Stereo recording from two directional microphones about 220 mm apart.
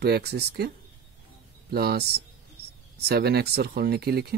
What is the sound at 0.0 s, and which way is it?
Speech, 45° right (ahead or behind).